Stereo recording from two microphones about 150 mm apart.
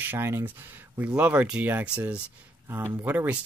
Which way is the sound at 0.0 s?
15° right (ahead or behind).